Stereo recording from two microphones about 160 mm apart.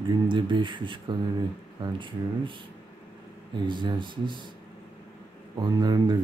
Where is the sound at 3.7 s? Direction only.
30° right (ahead or behind).